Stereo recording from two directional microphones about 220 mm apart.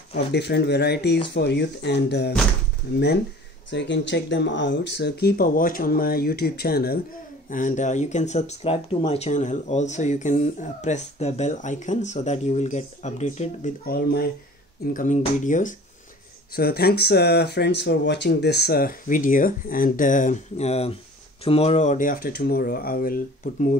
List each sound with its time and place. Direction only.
0.3 s speech: 50° left (ahead or behind)
3.7 s speech: 55° left (ahead or behind); by 13.9 s 30° left (ahead or behind)
13.9 s speech: 45° left (ahead or behind)